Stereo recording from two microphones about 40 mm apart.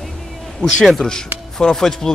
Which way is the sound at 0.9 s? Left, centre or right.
Centre.